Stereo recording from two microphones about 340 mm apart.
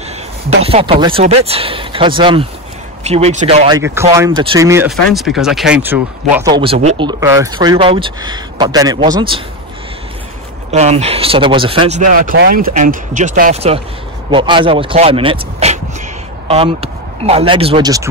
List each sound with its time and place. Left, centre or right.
0.7 s speech: centre
10.7 s speech: centre